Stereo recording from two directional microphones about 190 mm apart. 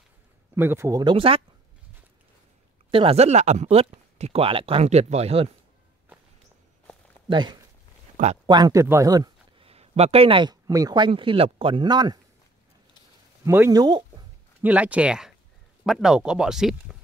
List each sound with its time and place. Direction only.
0.6 s speech: 15° right (ahead or behind); by 1.4 s 30° right (ahead or behind)
2.9 s speech: 30° right (ahead or behind)
7.2 s a man's voice: 25° right (ahead or behind)
9.7 s speech: 35° right (ahead or behind)
13.5 s speech: 15° right (ahead or behind)
14.6 s speech: 5° right (ahead or behind)